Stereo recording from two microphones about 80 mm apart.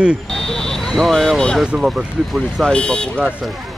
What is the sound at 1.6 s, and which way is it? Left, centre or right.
Speech, centre.